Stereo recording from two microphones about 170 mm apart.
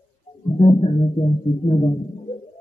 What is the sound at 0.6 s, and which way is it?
A man's voice, 30° left (ahead or behind).